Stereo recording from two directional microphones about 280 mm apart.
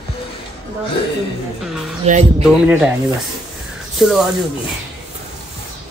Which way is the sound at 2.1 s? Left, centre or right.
Right.